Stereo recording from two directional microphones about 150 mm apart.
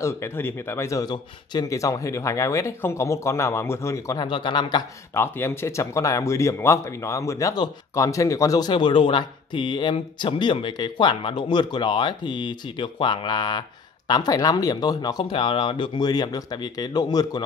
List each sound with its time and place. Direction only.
0.0 s speech: 15° left (ahead or behind)
4.3 s speech: 30° left (ahead or behind)
5.1 s speech: 15° left (ahead or behind)